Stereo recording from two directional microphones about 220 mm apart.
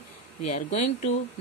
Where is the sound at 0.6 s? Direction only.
30° left (ahead or behind).